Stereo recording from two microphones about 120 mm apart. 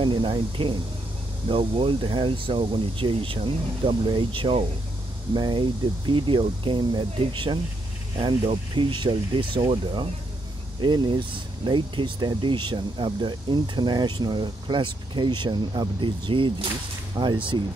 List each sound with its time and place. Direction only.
0.0 s speech: 45° right (ahead or behind)